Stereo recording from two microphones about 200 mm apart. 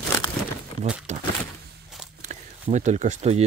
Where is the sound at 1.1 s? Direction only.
35° right (ahead or behind).